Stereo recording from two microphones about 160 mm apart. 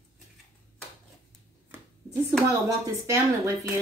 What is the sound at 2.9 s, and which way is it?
Speech, 20° right (ahead or behind).